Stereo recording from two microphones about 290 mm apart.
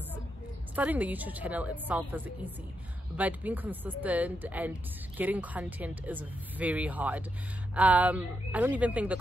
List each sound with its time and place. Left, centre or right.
0.7 s speech: centre